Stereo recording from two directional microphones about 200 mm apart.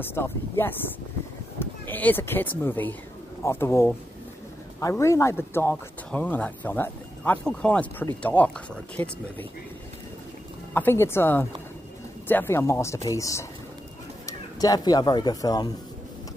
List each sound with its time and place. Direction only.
0.0 s speech: 10° left (ahead or behind)
10.7 s speech: 10° left (ahead or behind)